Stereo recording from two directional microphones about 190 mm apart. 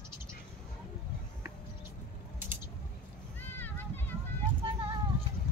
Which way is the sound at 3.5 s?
10° left (ahead or behind).